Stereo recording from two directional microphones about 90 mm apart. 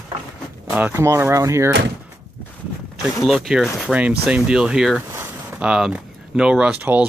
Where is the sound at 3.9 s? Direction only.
15° right (ahead or behind).